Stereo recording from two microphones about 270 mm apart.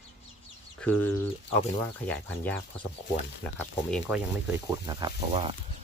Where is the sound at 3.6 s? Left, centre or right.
Centre.